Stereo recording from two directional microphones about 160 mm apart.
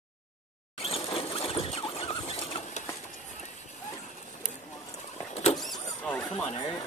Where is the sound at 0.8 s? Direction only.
35° left (ahead or behind).